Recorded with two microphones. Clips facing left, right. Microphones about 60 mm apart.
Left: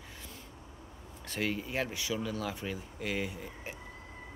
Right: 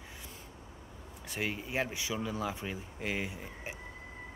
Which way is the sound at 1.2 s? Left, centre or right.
Centre.